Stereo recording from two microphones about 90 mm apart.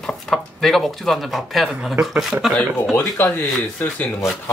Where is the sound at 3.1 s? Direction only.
25° left (ahead or behind).